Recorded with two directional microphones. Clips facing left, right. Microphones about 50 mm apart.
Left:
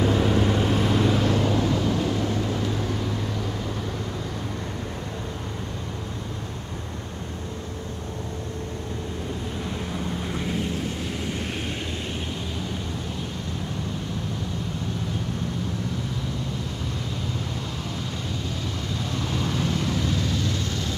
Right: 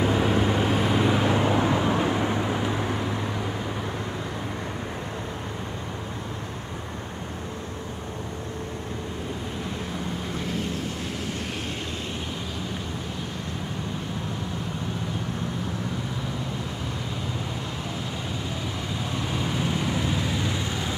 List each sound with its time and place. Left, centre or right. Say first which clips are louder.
0.0 s vehicle: left 1 dB; centre
19.1 s vehicle: left 1 dB; centre